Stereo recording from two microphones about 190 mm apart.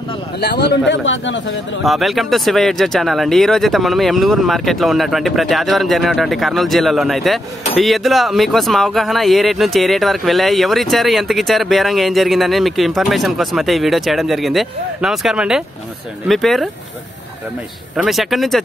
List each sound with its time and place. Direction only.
0.4 s a man's voice: 60° left (ahead or behind); by 1.4 s 80° left
1.8 s speech: centre (ahead or behind)
17.9 s speech: centre (ahead or behind)